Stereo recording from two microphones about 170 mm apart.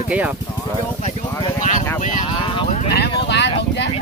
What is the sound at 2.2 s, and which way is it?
Speech, 30° left (ahead or behind).